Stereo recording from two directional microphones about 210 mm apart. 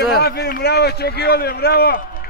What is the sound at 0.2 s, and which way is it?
A man's voice, 45° left (ahead or behind).